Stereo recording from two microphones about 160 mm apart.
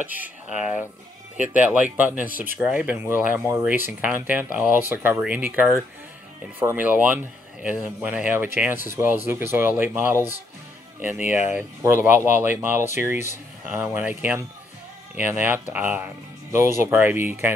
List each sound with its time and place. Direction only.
0.2 s speech: 10° right (ahead or behind)
1.3 s speech: 50° left (ahead or behind)
1.6 s speech: 10° right (ahead or behind)